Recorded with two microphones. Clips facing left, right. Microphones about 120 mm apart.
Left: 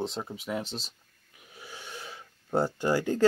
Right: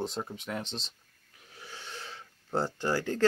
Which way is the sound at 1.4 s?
10° left (ahead or behind).